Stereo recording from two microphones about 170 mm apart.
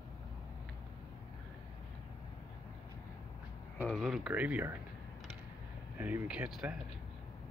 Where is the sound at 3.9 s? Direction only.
Centre (ahead or behind).